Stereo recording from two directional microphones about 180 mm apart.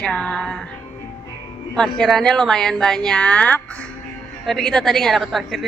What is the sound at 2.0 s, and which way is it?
A woman's voice, centre (ahead or behind).